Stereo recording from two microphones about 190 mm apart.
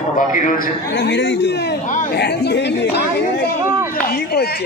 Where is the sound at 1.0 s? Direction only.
65° left (ahead or behind).